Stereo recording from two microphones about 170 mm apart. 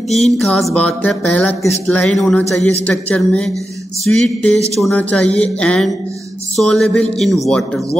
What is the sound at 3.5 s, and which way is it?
Music, 20° right (ahead or behind).